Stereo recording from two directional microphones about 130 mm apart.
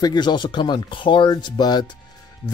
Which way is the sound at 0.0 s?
35° left (ahead or behind).